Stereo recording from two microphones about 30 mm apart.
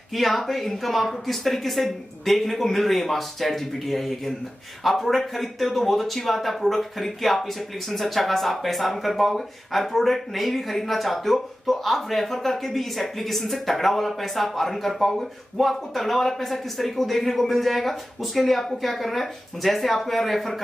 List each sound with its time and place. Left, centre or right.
0.1 s speech: centre